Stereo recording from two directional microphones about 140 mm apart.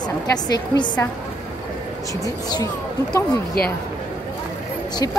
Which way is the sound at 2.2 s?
25° left (ahead or behind).